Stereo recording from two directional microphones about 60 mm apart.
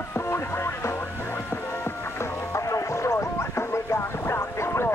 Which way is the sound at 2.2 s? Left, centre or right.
Left.